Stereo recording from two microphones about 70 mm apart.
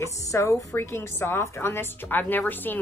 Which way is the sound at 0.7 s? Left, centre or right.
Left.